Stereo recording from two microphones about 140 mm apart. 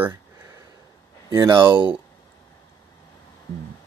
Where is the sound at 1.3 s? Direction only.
25° right (ahead or behind).